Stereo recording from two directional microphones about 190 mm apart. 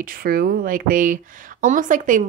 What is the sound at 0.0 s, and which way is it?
Speech, 50° right (ahead or behind).